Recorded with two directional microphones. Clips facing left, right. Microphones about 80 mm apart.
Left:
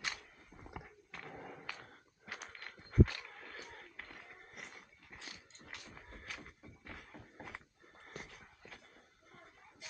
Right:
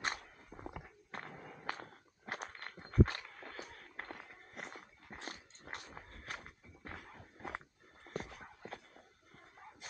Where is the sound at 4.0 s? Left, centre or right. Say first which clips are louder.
Right 4 dB; right.